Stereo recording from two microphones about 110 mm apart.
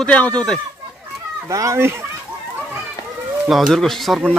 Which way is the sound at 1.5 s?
30° right (ahead or behind).